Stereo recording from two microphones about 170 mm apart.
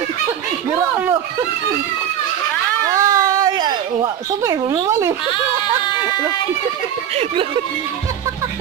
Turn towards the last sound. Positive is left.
turn(degrees=-30)  # may be behind; listen again after turning